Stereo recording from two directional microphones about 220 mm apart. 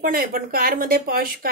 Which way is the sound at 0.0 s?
40° right (ahead or behind).